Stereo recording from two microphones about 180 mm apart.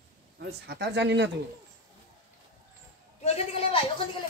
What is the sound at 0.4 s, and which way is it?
Speech, 65° right (ahead or behind).